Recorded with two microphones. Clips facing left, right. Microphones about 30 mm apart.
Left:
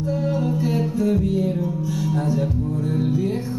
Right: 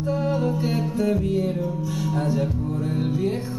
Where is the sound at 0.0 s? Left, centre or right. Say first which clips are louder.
Left 1 dB; centre.